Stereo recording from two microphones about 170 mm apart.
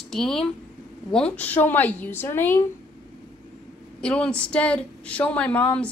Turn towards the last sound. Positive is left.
turn(degrees=10)  # may be behind; listen again after turning